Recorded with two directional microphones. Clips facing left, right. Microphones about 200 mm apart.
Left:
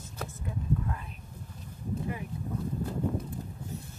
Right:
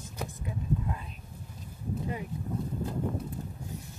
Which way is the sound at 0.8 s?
20° right (ahead or behind).